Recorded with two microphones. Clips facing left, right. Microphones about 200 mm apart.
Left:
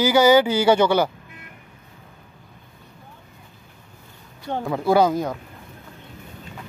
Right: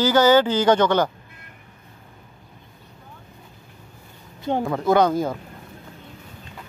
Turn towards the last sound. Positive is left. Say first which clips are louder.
# even
turn(degrees=0)  # may be behind; listen again after turning